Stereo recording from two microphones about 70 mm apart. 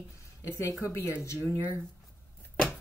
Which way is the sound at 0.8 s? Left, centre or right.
Right.